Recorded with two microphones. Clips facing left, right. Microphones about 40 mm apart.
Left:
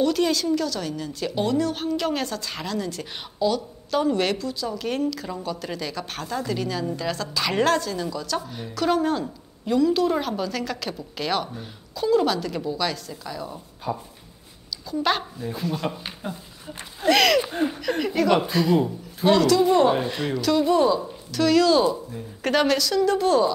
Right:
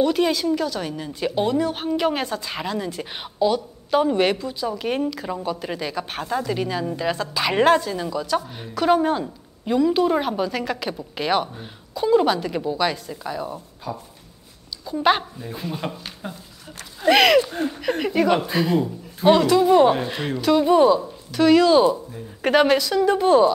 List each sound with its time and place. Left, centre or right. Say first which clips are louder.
0.0 s a woman's voice: right 2 dB; centre
13.9 s speech: left 2 dB; centre
14.9 s a woman's voice: right 4 dB; right
15.3 s speech: left 2 dB; centre
17.1 s speech: right 3 dB; centre
17.4 s speech: right 2 dB; centre
17.7 s a woman's voice: right 2 dB; centre